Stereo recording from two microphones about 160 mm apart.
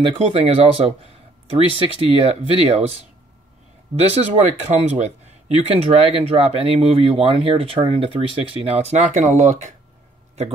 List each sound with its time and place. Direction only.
0.0 s speech: 35° right (ahead or behind)
4.1 s speech: 45° right (ahead or behind)